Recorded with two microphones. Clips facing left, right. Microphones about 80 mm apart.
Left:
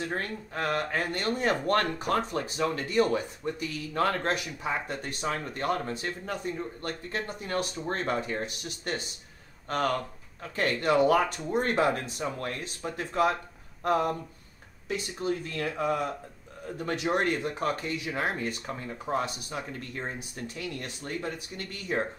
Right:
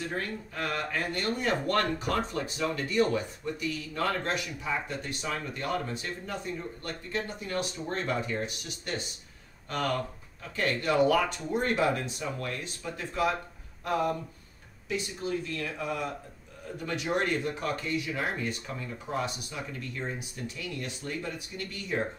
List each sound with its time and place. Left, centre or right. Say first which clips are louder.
0.1 s speech: left 1 dB; left
10.5 s speech: left 2 dB; left
14.9 s speech: left 2 dB; left